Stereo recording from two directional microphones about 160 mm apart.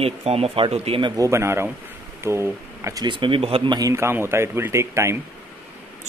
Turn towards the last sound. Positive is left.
turn(degrees=-15)  # may be behind; listen again after turning